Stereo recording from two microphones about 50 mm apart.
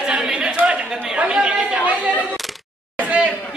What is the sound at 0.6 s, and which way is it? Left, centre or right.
A man's voice, right.